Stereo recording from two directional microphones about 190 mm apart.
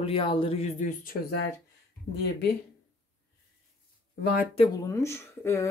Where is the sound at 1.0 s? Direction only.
55° left (ahead or behind).